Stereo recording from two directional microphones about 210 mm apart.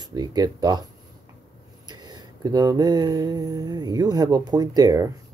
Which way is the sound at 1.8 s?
20° right (ahead or behind).